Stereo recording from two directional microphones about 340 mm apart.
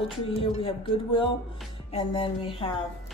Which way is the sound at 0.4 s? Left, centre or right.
Centre.